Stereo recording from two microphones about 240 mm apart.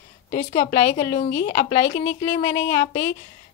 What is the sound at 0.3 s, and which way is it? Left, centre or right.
Speech, left.